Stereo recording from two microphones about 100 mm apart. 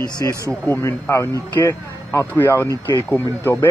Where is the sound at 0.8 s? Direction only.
30° left (ahead or behind).